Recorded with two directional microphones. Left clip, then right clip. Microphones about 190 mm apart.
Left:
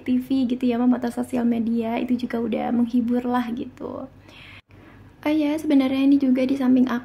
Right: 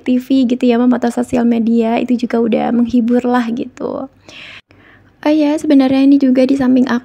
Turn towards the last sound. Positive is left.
turn(degrees=-35)  # may be behind; listen again after turning